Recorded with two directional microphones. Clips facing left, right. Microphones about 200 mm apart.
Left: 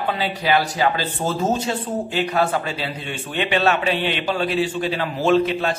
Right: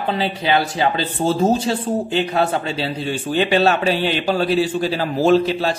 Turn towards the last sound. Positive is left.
turn(degrees=-30)  # may be behind; listen again after turning